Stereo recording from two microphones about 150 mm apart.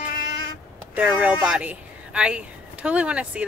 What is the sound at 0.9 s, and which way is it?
A woman's voice, 10° right (ahead or behind).